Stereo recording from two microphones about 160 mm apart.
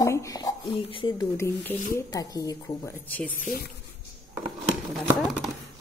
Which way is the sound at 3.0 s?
10° left (ahead or behind).